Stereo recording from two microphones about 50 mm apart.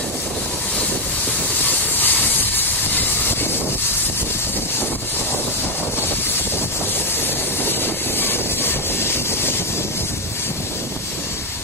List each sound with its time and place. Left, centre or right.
1.6 s train: left
7.6 s vehicle: left